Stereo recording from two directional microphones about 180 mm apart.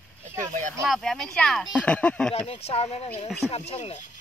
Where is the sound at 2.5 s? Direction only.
35° left (ahead or behind).